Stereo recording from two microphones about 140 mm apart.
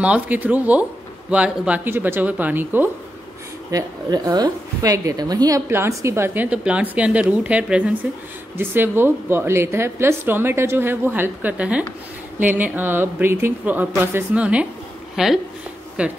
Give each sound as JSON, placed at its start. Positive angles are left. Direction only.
{"t": 0.0, "sound": "a woman's voice", "side_deg": -10}
{"t": 3.7, "sound": "a woman's voice", "side_deg": -30}